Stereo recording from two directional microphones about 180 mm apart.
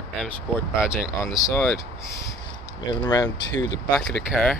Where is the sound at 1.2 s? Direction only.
20° left (ahead or behind).